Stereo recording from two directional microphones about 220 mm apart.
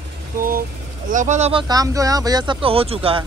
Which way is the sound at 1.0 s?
35° right (ahead or behind).